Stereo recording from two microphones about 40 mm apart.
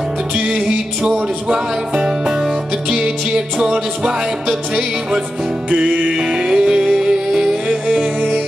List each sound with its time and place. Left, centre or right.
0.4 s music: right
5.7 s music: right
6.0 s music: centre